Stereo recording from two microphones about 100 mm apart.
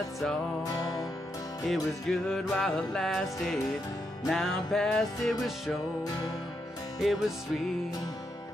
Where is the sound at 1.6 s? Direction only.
5° left (ahead or behind).